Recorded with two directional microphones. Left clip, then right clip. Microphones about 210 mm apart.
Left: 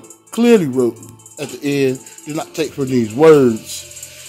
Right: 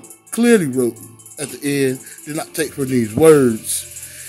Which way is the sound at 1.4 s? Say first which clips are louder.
Left 2 dB; 15° right (ahead or behind).